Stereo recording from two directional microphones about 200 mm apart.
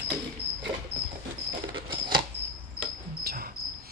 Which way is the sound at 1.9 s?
25° right (ahead or behind).